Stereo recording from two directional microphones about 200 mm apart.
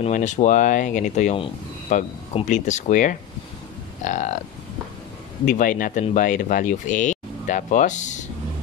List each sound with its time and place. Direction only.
0.0 s speech: 35° left (ahead or behind)
5.4 s speech: 40° left (ahead or behind)